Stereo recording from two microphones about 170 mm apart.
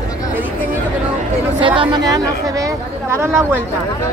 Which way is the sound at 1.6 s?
30° right (ahead or behind).